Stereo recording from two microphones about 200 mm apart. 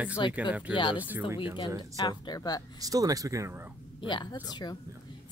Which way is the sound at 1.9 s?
20° left (ahead or behind).